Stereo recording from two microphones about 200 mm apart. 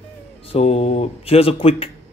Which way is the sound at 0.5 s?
30° left (ahead or behind).